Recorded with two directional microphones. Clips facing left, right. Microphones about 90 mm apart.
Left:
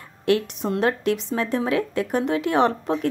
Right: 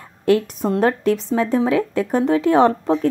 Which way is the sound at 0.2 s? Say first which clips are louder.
Right 4 dB; 40° right (ahead or behind).